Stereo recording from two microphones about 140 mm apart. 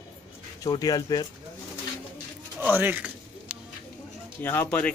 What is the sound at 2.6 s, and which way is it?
Pigeon, 15° right (ahead or behind).